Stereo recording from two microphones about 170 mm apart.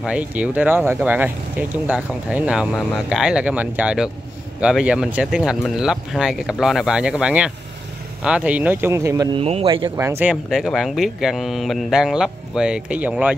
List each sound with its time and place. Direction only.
0.0 s speech: 5° right (ahead or behind)
9.4 s speech: 35° right (ahead or behind)
9.8 s speech: 15° right (ahead or behind)
10.3 s speech: centre (ahead or behind)